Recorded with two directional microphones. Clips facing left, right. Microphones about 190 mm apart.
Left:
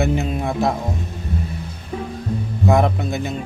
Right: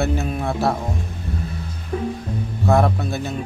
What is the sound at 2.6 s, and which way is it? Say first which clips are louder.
Speech: left 1 dB; 20° left (ahead or behind).